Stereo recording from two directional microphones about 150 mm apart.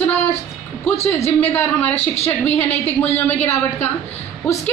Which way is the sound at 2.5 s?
15° left (ahead or behind).